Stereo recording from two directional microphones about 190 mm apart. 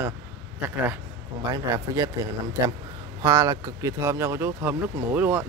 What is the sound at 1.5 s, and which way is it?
Speech, 20° right (ahead or behind).